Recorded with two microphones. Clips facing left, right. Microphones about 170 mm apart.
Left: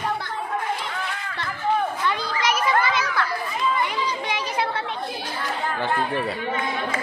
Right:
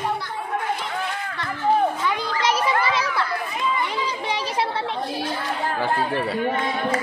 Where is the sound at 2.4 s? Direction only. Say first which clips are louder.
Even; 30° right (ahead or behind).